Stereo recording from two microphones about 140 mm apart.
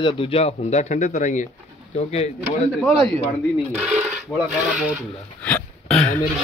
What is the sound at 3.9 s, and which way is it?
Dishes, 5° left (ahead or behind).